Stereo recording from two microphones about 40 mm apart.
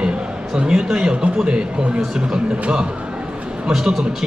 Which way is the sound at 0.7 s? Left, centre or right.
Centre.